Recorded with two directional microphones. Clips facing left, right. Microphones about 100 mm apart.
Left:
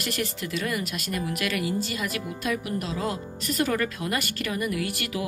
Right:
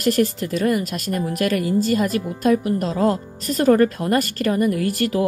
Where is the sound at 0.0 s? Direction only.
40° right (ahead or behind).